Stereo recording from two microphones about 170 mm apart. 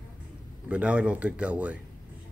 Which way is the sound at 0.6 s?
5° right (ahead or behind).